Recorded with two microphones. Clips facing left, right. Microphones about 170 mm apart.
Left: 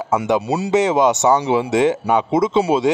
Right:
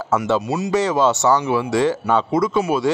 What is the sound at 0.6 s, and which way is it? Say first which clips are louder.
Speech: left 4 dB; 20° left (ahead or behind).